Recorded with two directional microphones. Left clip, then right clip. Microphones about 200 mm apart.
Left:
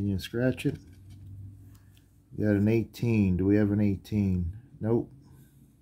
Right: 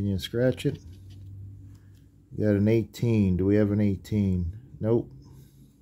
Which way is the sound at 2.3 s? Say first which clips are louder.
Right 3 dB; 15° right (ahead or behind).